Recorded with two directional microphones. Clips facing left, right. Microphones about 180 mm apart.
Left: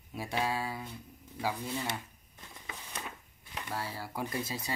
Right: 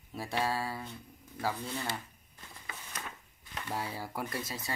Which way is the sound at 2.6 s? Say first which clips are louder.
Left 1 dB; 10° left (ahead or behind).